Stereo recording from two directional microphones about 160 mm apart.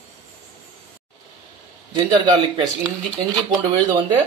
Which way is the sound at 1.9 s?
30° right (ahead or behind).